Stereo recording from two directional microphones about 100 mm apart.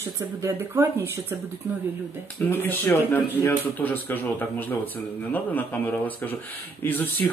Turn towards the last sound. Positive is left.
turn(degrees=15)  # may be behind; listen again after turning